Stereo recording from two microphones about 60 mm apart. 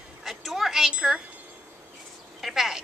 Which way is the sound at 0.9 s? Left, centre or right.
Centre.